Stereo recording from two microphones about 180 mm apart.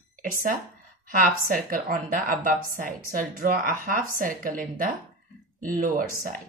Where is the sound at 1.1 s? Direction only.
50° right (ahead or behind).